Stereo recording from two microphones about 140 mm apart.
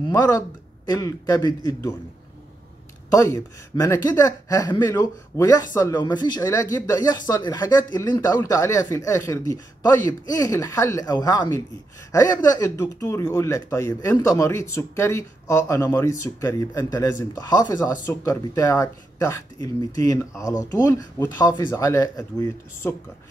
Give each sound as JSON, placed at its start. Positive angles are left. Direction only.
{"t": 0.1, "sound": "speech", "side_deg": 25}
{"t": 3.1, "sound": "speech", "side_deg": 25}